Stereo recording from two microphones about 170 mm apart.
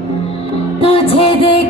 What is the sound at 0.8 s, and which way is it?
Music, 35° left (ahead or behind).